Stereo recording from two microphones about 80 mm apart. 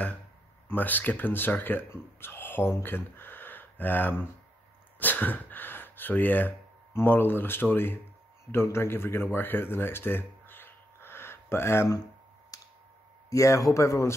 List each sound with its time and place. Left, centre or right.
0.7 s speech: left
12.5 s a sound: left
13.3 s speech: left